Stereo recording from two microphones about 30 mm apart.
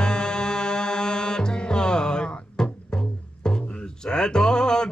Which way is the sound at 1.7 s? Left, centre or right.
Left.